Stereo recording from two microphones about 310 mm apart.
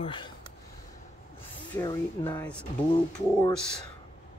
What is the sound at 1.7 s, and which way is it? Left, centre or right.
Speech, centre.